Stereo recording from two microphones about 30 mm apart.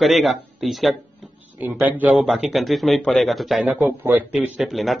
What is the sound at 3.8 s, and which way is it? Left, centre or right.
Speech, right.